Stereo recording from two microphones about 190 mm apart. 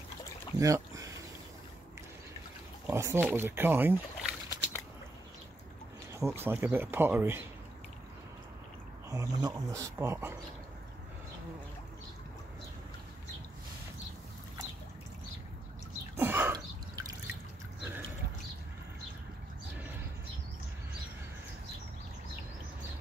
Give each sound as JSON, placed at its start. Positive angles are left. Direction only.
{"t": 0.6, "sound": "speech", "side_deg": -15}
{"t": 2.9, "sound": "speech", "side_deg": -15}
{"t": 6.1, "sound": "speech", "side_deg": -15}
{"t": 9.1, "sound": "speech", "side_deg": -20}
{"t": 16.2, "sound": "a sound", "side_deg": -10}
{"t": 16.5, "sound": "drip", "side_deg": -20}